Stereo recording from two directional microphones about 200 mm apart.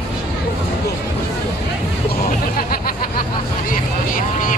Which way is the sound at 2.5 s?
45° left (ahead or behind).